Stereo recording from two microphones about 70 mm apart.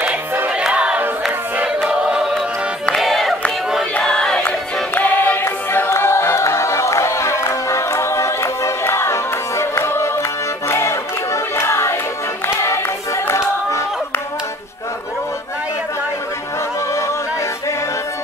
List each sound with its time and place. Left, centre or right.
0.6 s battle cry: centre
1.9 s choir: centre
3.0 s music: centre
4.4 s music: left
13.3 s a sound: left